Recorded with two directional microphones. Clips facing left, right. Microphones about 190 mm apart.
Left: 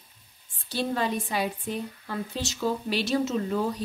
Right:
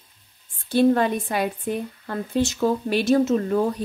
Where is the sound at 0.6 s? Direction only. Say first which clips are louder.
Right 10 dB; 55° right (ahead or behind).